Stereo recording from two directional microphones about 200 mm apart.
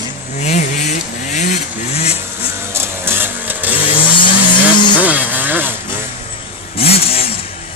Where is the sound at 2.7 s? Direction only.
10° right (ahead or behind).